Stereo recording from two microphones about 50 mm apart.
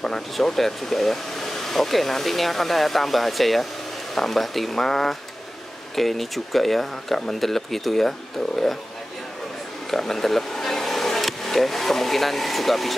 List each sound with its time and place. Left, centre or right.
0.0 s speech: centre
9.8 s speech: centre